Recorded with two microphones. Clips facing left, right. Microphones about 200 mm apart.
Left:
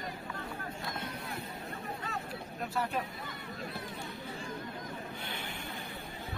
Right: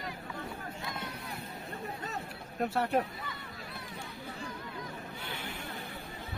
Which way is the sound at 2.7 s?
65° right (ahead or behind).